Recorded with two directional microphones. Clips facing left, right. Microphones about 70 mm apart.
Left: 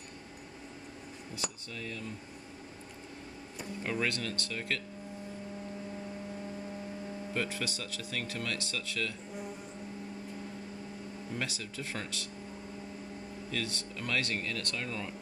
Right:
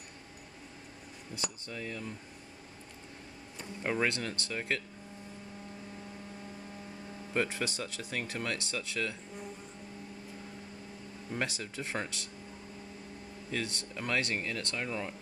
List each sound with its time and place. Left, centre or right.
1.7 s speech: centre
3.8 s speech: right
7.3 s speech: right
11.3 s speech: right
13.5 s speech: right